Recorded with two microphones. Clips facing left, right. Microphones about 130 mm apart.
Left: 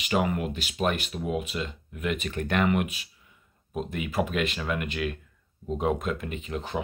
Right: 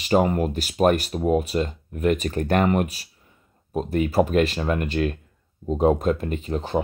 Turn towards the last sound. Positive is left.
turn(degrees=-40)  # may be behind; listen again after turning